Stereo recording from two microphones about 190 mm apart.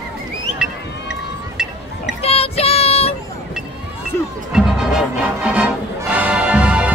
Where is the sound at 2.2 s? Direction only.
30° left (ahead or behind).